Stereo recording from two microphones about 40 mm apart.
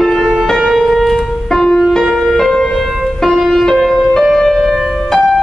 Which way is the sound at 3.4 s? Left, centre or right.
Centre.